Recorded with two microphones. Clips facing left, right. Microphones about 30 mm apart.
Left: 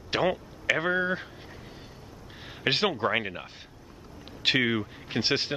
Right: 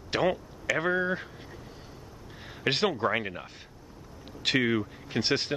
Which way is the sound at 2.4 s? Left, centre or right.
Centre.